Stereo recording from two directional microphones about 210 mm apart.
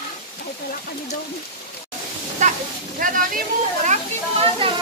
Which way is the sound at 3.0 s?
40° right (ahead or behind).